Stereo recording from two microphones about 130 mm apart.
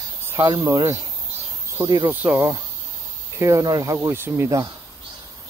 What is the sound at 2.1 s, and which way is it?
Speech, 15° right (ahead or behind).